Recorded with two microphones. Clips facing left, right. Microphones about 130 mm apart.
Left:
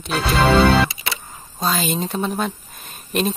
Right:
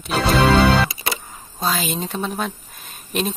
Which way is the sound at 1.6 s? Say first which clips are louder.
Left 1 dB; centre (ahead or behind).